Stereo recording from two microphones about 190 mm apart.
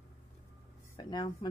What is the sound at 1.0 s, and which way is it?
Speech, 20° left (ahead or behind).